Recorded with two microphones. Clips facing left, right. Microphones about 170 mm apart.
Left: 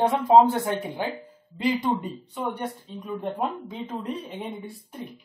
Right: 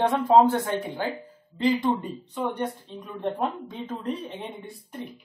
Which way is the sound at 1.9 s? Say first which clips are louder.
Even; centre (ahead or behind).